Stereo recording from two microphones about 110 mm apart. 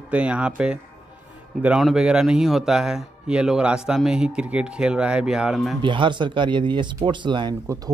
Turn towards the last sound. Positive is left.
turn(degrees=-45)  # may be behind; listen again after turning